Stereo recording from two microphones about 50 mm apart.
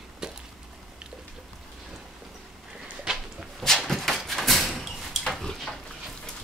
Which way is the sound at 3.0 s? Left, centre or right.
Centre.